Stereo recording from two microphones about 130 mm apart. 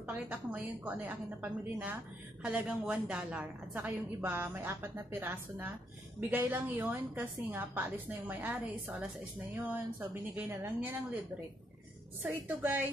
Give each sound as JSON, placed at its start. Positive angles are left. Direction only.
{"t": 0.0, "sound": "a woman's voice", "side_deg": -10}
{"t": 12.2, "sound": "a woman's voice", "side_deg": -15}